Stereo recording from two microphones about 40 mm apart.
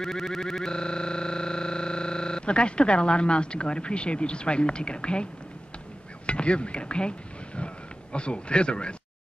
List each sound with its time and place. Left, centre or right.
0.0 s synthesizer: centre; by 5.3 s left
6.2 s speech: left